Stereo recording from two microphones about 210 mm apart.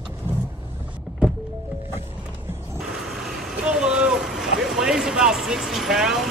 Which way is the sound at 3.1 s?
Centre (ahead or behind).